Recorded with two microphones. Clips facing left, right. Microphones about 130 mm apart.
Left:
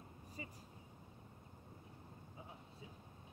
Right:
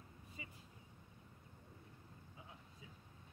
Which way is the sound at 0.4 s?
40° left (ahead or behind).